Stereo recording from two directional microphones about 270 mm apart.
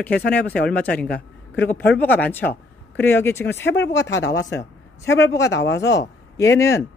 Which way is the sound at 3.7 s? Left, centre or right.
Left.